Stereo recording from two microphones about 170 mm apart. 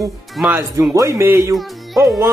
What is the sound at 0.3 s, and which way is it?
Speech, centre (ahead or behind).